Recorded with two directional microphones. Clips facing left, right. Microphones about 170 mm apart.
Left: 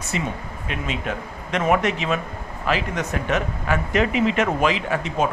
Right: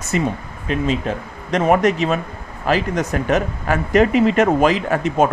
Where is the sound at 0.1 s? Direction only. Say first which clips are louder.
Right 7 dB; 35° right (ahead or behind).